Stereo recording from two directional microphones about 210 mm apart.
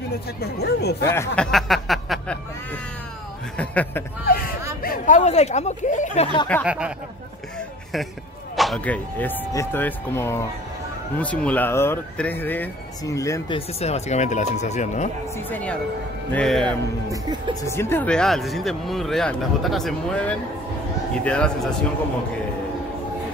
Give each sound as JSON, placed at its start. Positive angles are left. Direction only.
{"t": 0.4, "sound": "speech", "side_deg": 50}
{"t": 1.1, "sound": "speech", "side_deg": 10}
{"t": 3.5, "sound": "speech", "side_deg": 5}
{"t": 4.8, "sound": "speech", "side_deg": 40}
{"t": 6.6, "sound": "speech", "side_deg": -5}
{"t": 8.5, "sound": "speech", "side_deg": 0}
{"t": 13.7, "sound": "speech", "side_deg": 30}
{"t": 15.5, "sound": "speech", "side_deg": 5}
{"t": 16.6, "sound": "speech", "side_deg": -20}
{"t": 17.6, "sound": "speech", "side_deg": 10}